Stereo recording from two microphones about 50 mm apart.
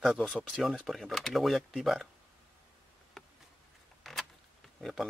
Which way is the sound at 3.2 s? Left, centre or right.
Centre.